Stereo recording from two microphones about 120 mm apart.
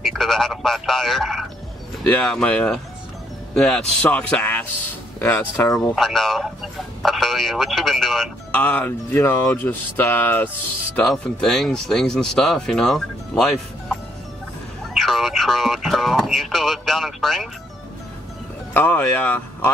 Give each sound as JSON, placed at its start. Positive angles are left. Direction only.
{"t": 0.0, "sound": "speech", "side_deg": 5}
{"t": 5.9, "sound": "speech", "side_deg": 0}
{"t": 8.5, "sound": "speech", "side_deg": 15}
{"t": 11.1, "sound": "speech", "side_deg": 0}
{"t": 15.0, "sound": "speech", "side_deg": 0}
{"t": 18.7, "sound": "speech", "side_deg": 15}